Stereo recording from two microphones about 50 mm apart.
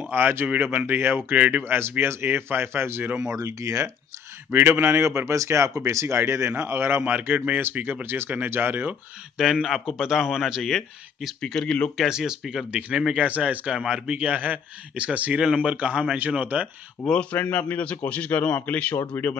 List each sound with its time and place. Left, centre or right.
0.0 s speech: right
1.3 s a man's voice: right
1.6 s speech: right
3.4 s speech: right
4.5 s speech: right
6.1 s speech: right
7.0 s speech: right
9.4 s a man's voice: centre
11.4 s speech: centre
12.0 s a man's voice: centre
13.2 s a man's voice: right
15.4 s a man's voice: centre
17.1 s a man's voice: left
18.9 s speech: left